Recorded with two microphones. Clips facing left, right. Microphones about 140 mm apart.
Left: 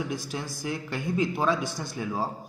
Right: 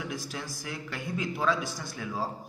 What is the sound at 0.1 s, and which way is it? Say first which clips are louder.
A man's voice: left 4 dB; 25° left (ahead or behind).